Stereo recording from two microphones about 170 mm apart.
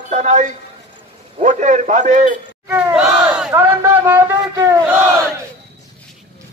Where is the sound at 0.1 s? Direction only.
40° right (ahead or behind).